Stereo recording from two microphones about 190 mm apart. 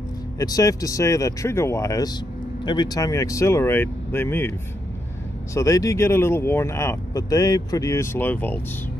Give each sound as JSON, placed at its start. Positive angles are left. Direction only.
{"t": 0.4, "sound": "speech", "side_deg": 20}